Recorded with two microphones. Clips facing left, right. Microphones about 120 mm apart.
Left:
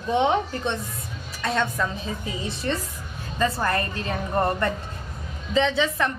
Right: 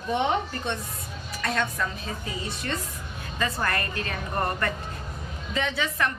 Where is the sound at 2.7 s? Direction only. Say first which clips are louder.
Left 4 dB; 25° left (ahead or behind).